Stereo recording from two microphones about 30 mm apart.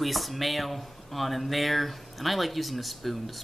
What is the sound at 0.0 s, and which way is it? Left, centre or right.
Speech, centre.